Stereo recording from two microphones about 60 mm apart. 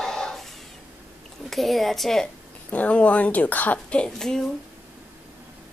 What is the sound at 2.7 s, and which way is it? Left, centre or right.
Speech, left.